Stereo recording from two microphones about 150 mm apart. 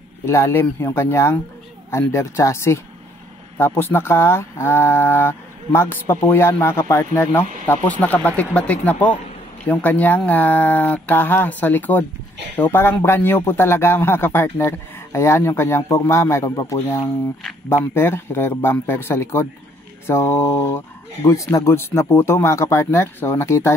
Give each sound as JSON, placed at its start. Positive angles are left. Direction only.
{"t": 0.2, "sound": "a man's voice", "side_deg": 15}